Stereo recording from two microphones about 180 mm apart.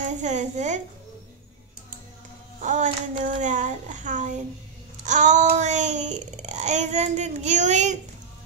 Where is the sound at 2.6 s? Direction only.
45° right (ahead or behind).